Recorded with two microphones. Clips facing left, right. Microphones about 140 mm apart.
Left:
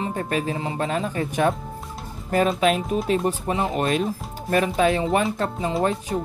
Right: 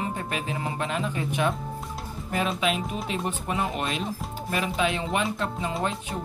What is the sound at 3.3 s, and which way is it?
Speech, 35° left (ahead or behind).